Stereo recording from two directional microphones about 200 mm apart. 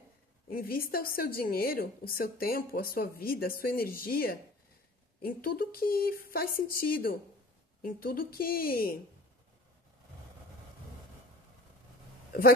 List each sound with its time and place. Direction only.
0.5 s a woman's voice: 45° left (ahead or behind)